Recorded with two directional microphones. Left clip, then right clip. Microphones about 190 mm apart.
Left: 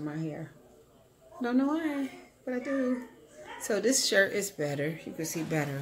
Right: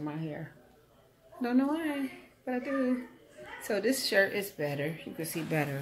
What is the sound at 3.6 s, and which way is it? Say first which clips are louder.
Speech: left 3 dB; 25° left (ahead or behind).